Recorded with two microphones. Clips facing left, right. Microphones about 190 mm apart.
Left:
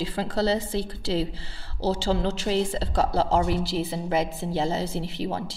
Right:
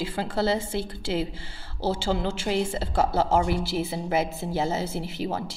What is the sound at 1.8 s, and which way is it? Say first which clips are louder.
A woman's voice: left 1 dB; 35° left (ahead or behind).